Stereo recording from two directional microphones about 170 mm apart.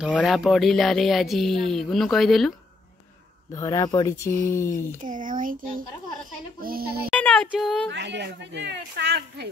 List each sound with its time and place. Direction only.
0.1 s speech: centre (ahead or behind)
3.5 s speech: 20° left (ahead or behind)
5.0 s a child's voice: 50° right (ahead or behind)
7.1 s female singing: 5° left (ahead or behind)
7.9 s speech: 85° right